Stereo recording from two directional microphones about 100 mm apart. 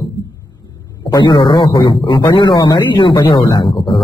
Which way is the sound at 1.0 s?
50° left (ahead or behind).